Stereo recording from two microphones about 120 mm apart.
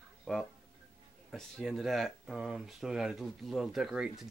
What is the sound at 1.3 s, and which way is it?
Speech, centre (ahead or behind).